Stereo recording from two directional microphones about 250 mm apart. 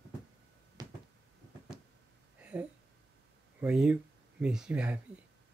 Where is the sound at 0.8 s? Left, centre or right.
Centre.